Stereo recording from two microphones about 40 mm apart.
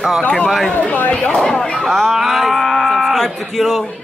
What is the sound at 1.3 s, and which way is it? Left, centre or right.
Speech, centre.